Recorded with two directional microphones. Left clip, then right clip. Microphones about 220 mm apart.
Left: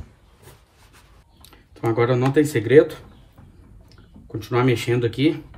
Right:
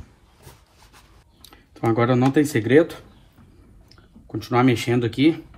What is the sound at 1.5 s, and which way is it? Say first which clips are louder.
Speech: right 1 dB; 20° right (ahead or behind).